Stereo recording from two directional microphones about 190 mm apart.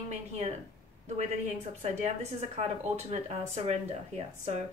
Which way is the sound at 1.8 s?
35° right (ahead or behind).